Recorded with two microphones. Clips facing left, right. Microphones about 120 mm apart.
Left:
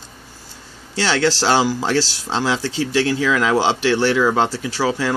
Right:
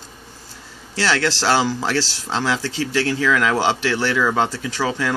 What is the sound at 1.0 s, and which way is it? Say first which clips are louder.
Speech: left 2 dB; 15° left (ahead or behind).